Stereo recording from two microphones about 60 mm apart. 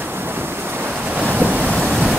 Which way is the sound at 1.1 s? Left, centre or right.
Right.